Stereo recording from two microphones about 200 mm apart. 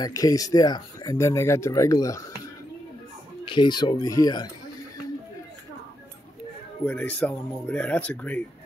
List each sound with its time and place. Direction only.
0.0 s speech: 15° left (ahead or behind)
3.4 s speech: 25° left (ahead or behind)
6.9 s speech: 5° left (ahead or behind)